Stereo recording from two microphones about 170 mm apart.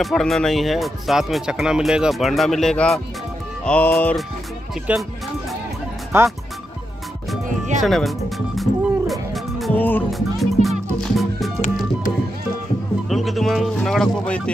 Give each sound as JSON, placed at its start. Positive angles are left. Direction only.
{"t": 0.0, "sound": "speech", "side_deg": 0}
{"t": 4.9, "sound": "speech", "side_deg": -10}
{"t": 6.1, "sound": "speech", "side_deg": -15}
{"t": 7.4, "sound": "music", "side_deg": -45}
{"t": 7.8, "sound": "speech", "side_deg": 0}
{"t": 8.5, "sound": "music", "side_deg": 0}
{"t": 9.8, "sound": "speech", "side_deg": 10}
{"t": 10.1, "sound": "music", "side_deg": 0}
{"t": 13.1, "sound": "music", "side_deg": 0}